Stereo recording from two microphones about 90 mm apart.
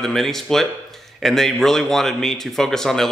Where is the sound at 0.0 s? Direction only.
5° left (ahead or behind).